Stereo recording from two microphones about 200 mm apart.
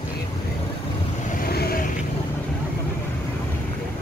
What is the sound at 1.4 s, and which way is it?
Vehicle, 50° left (ahead or behind).